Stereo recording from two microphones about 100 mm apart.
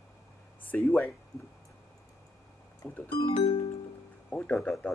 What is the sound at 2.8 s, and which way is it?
Speech, 5° left (ahead or behind).